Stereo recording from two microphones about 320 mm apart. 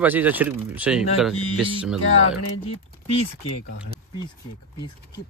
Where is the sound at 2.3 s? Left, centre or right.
Left.